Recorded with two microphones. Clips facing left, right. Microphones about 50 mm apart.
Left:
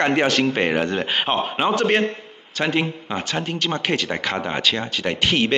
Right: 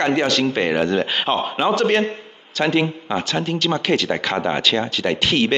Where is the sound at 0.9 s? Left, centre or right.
Centre.